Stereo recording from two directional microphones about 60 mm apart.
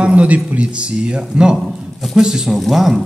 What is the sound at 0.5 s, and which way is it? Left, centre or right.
A man's voice, centre.